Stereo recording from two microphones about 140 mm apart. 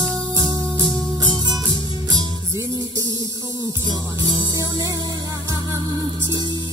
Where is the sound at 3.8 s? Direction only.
30° right (ahead or behind).